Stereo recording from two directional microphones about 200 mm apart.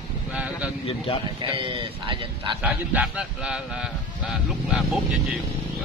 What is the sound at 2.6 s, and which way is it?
Speech, 5° right (ahead or behind).